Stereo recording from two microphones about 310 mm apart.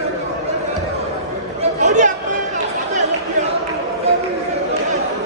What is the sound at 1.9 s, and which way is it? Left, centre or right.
Chatter, right.